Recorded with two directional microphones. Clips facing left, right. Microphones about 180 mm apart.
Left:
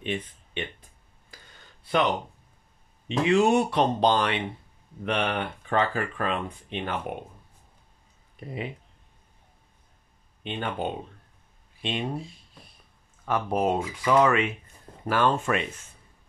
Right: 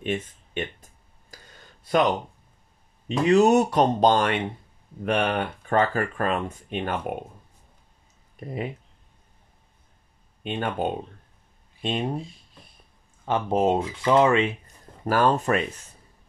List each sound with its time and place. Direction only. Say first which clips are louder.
0.0 s a sound: right 3 dB; 45° right (ahead or behind)
3.1 s speech: right 3 dB; 40° right (ahead or behind)
8.4 s speech: right 3 dB; 45° right (ahead or behind)
10.4 s speech: right 3 dB; 45° right (ahead or behind)
13.2 s speech: right 3 dB; 25° right (ahead or behind)
15.0 s speech: right 3 dB; 40° right (ahead or behind)